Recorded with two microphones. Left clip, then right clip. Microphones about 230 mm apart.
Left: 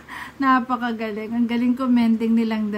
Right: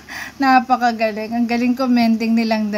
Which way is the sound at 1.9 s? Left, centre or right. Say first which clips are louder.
Right 3 dB; centre.